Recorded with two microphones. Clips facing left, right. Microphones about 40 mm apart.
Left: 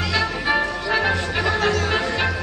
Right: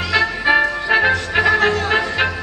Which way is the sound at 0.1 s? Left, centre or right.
Right.